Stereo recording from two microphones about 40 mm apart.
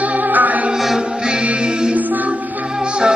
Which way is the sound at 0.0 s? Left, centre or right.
Right.